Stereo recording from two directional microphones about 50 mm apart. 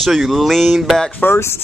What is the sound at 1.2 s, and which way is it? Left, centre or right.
Speech, left.